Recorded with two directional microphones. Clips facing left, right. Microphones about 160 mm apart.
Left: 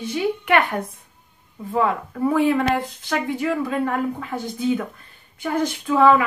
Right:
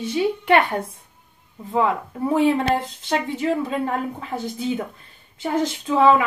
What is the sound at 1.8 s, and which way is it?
Speech, 25° right (ahead or behind).